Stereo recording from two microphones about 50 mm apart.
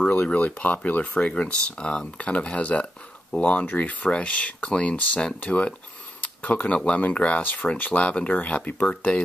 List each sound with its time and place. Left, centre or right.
0.1 s speech: left